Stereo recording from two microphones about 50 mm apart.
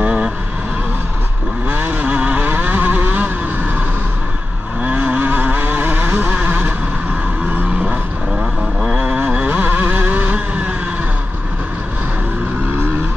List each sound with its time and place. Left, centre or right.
0.0 s vehicle: right
1.7 s vehicle: right
4.8 s vehicle: right
7.8 s vehicle: centre